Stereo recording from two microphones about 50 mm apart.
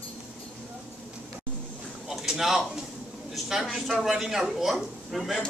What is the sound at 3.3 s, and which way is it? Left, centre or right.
A man's voice, centre.